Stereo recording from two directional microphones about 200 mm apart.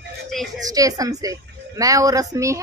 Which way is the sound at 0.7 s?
15° right (ahead or behind).